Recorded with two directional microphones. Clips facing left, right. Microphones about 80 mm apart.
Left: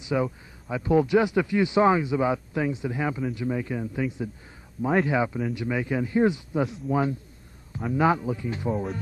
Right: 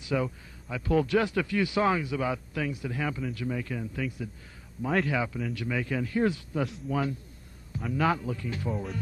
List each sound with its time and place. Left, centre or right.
0.0 s a man's voice: centre